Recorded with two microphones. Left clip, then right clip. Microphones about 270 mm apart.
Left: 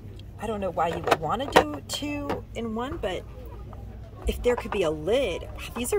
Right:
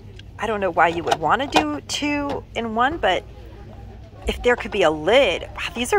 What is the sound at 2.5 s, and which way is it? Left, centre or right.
Speech, centre.